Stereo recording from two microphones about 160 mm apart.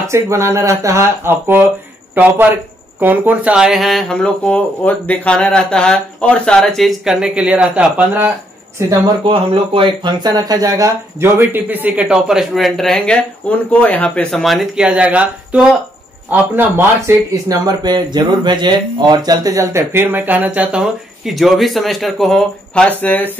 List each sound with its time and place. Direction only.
0.1 s speech: 15° right (ahead or behind)
9.2 s speech: 35° right (ahead or behind); by 23.3 s 10° left (ahead or behind)